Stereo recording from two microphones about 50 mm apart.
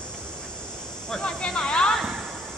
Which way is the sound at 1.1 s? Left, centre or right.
Centre.